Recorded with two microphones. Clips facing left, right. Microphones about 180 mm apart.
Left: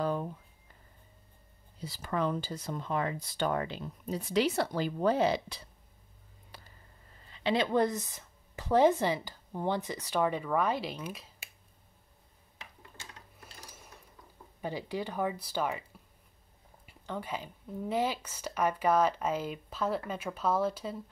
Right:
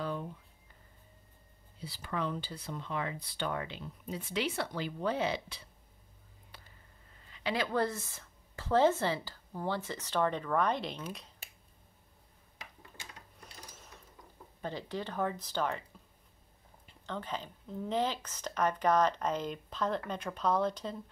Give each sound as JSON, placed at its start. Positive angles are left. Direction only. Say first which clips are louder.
{"t": 0.0, "sound": "a sound", "louder": "left 5 dB", "side_deg": 45}
{"t": 1.8, "sound": "speech", "louder": "left 4 dB", "side_deg": 45}
{"t": 7.2, "sound": "speech", "louder": "left 5 dB", "side_deg": 30}
{"t": 14.6, "sound": "speech", "louder": "left 3 dB", "side_deg": 10}
{"t": 16.8, "sound": "speech", "louder": "left 2 dB", "side_deg": 10}